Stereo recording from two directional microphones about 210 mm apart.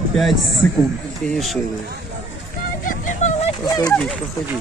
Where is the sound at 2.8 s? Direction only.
40° left (ahead or behind).